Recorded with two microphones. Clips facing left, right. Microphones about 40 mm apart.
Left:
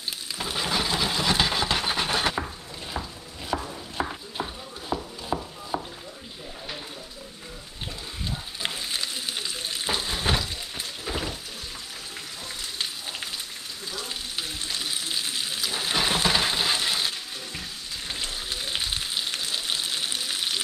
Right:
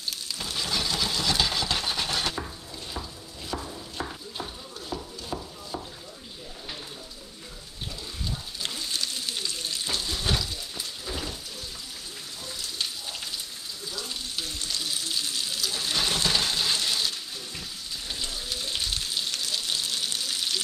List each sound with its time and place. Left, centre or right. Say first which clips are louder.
0.4 s a sound: left 4 dB; left
8.6 s stir: left 2 dB; left
14.0 s frying: left 1 dB; left
18.0 s frying: left 2 dB; left
18.7 s frying: left 2 dB; left